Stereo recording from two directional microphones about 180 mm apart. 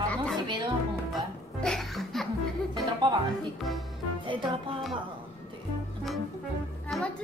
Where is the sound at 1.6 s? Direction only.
Centre (ahead or behind).